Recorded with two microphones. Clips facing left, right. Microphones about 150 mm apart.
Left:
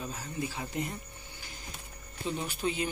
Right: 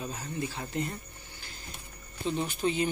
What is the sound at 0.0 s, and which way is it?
Speech, 5° left (ahead or behind).